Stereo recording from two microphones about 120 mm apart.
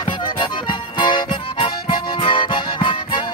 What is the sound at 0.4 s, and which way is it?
Music, 40° left (ahead or behind).